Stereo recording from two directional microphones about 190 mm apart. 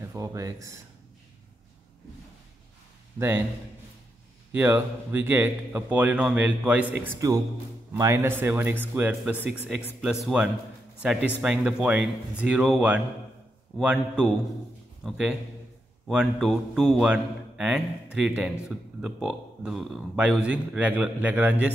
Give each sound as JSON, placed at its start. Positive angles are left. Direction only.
{"t": 0.0, "sound": "speech", "side_deg": -20}
{"t": 3.2, "sound": "a man's voice", "side_deg": -10}
{"t": 4.5, "sound": "a man's voice", "side_deg": -10}